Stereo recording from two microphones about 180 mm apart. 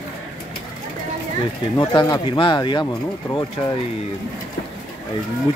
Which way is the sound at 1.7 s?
25° left (ahead or behind).